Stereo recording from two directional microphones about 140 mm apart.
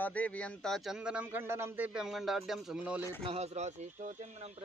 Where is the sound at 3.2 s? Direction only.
45° right (ahead or behind).